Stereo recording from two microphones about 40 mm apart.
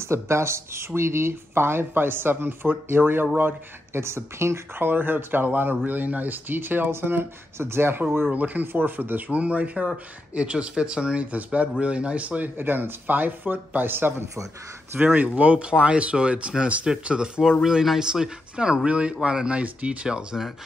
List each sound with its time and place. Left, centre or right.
0.1 s speech: right
3.3 s speech: right
6.9 s speech: right
8.3 s speech: right
8.7 s speech: right
9.3 s speech: right
11.3 s speech: right
12.5 s speech: right
15.1 s speech: right
17.6 s speech: centre
18.9 s speech: right
19.6 s speech: right
20.3 s speech: centre